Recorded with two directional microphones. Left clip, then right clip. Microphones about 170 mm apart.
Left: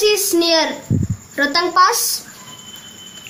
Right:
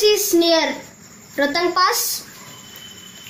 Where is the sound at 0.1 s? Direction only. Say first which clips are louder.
Even; 15° left (ahead or behind).